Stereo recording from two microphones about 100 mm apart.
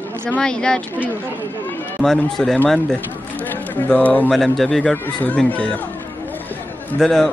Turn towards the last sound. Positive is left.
turn(degrees=5)  # may be behind; listen again after turning